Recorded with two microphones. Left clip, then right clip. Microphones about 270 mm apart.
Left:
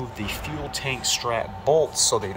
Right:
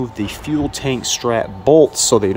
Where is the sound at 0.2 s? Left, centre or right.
Right.